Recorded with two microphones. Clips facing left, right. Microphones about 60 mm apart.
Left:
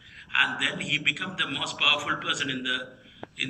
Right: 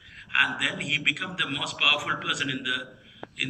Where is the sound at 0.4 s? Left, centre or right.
Right.